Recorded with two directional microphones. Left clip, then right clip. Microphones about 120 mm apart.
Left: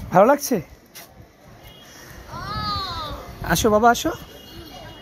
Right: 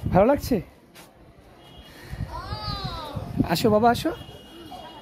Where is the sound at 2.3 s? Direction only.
60° left (ahead or behind).